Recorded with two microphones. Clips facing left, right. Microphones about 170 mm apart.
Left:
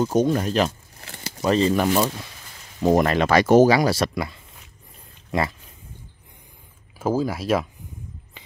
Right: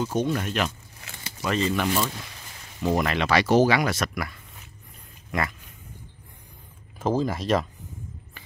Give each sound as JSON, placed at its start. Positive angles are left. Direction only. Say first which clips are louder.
{"t": 0.0, "sound": "speech", "louder": "left 6 dB", "side_deg": 40}
{"t": 7.0, "sound": "speech", "louder": "left 2 dB", "side_deg": 5}